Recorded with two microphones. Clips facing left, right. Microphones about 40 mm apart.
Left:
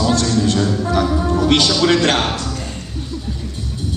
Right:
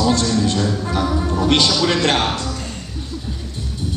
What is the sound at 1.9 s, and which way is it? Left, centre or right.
Speech, left.